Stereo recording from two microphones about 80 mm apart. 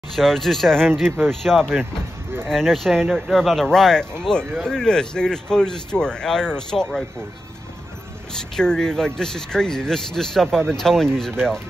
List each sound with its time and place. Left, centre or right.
0.1 s speech: centre
1.0 s speech: right
1.3 s speech: centre
8.4 s speech: centre